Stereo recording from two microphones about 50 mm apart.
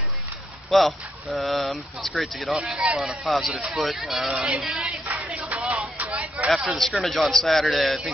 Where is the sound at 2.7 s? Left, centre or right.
Centre.